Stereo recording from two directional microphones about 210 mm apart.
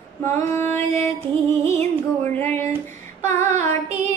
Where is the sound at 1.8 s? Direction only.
10° left (ahead or behind).